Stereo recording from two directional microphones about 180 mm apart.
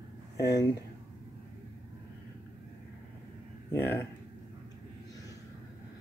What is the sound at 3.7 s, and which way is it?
Speech, 10° left (ahead or behind).